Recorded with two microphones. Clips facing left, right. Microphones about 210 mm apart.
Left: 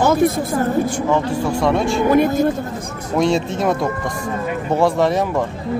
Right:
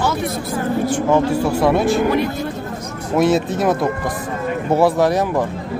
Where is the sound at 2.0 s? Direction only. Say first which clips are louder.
Left 4 dB; 50° left (ahead or behind).